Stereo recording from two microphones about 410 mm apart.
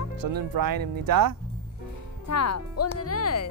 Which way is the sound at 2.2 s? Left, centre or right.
Left.